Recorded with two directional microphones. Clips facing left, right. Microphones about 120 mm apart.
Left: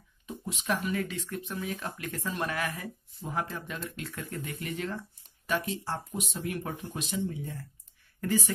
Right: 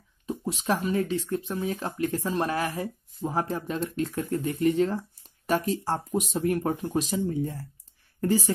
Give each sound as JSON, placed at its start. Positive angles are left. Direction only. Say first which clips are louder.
{"t": 0.3, "sound": "speech", "louder": "right 5 dB", "side_deg": -35}